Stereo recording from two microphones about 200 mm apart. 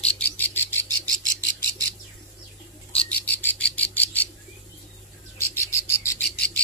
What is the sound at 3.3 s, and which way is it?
Frog, 10° left (ahead or behind).